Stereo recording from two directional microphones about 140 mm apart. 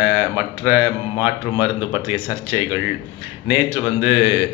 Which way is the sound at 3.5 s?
15° right (ahead or behind).